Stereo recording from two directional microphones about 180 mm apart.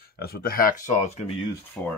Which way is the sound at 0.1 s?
60° left (ahead or behind).